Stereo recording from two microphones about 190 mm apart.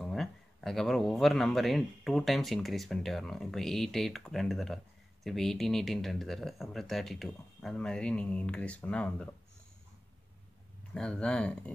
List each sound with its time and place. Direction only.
0.0 s speech: centre (ahead or behind)
11.0 s speech: 5° left (ahead or behind)